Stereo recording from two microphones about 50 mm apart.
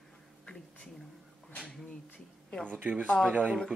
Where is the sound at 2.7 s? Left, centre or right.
Right.